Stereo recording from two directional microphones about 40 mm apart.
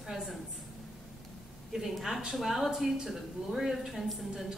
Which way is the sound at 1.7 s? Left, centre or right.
Centre.